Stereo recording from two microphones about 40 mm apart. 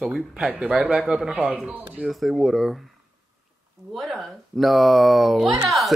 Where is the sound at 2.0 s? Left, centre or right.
Centre.